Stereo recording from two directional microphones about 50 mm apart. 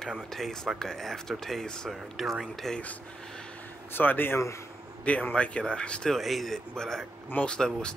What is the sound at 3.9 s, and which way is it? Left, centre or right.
Speech, left.